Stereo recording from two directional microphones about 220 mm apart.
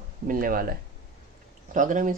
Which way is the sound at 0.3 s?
40° right (ahead or behind).